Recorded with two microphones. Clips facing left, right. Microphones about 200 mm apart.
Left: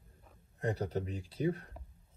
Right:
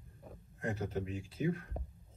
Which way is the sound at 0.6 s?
35° left (ahead or behind).